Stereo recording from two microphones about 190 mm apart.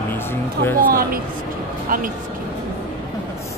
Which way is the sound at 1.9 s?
45° right (ahead or behind).